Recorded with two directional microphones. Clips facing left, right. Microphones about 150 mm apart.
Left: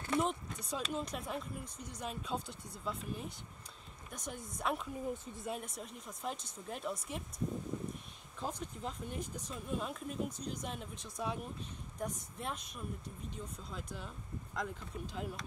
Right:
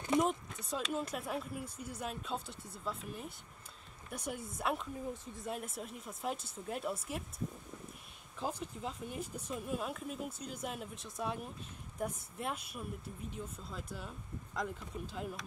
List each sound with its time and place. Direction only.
0.0 s vehicle: 15° right (ahead or behind)
0.3 s speech: centre (ahead or behind)
8.4 s speech: 5° right (ahead or behind)